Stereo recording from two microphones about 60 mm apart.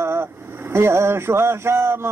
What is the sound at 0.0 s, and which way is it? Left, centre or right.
Vehicle, right.